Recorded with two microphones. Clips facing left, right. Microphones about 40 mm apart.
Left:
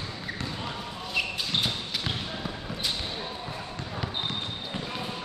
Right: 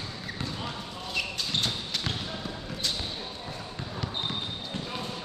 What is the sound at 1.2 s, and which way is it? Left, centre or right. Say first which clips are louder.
Basketball bounce: left 2 dB; centre.